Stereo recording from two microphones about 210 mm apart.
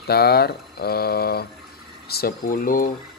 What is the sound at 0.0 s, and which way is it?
Speech, 50° left (ahead or behind).